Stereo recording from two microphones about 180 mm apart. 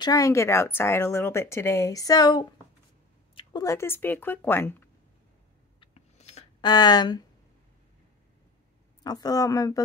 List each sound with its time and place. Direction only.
0.0 s speech: 20° left (ahead or behind)
5.8 s a sound: 35° left (ahead or behind)
6.6 s a woman's voice: 25° left (ahead or behind)
9.0 s a woman's voice: 20° left (ahead or behind)